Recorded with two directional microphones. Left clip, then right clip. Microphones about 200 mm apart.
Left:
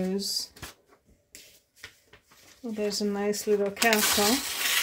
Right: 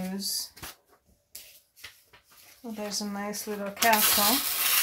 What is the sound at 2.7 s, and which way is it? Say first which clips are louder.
Speech: left 5 dB; 55° left (ahead or behind).